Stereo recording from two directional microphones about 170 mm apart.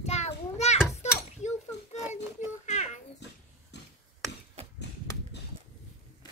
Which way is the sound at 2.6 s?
45° left (ahead or behind).